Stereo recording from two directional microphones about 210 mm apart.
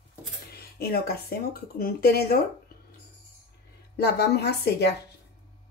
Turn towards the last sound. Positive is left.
turn(degrees=50)  # may be behind; listen again after turning